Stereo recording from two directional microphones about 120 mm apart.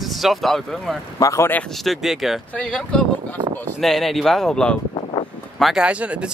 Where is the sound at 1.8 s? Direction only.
Centre (ahead or behind).